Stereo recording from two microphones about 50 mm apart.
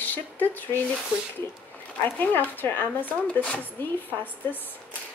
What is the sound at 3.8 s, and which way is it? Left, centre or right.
Speech, left.